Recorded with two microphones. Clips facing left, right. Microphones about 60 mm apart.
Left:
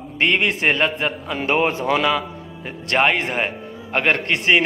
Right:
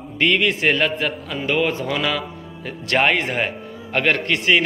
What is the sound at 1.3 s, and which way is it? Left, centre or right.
Speech, left.